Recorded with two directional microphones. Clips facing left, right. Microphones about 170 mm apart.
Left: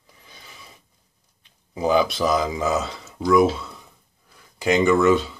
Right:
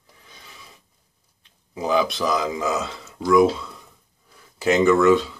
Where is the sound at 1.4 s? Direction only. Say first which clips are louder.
Left 4 dB; centre (ahead or behind).